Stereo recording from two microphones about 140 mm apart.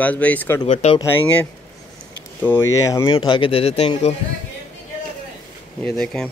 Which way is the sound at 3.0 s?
35° left (ahead or behind).